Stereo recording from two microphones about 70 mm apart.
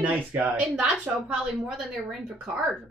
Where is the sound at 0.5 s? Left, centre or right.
Centre.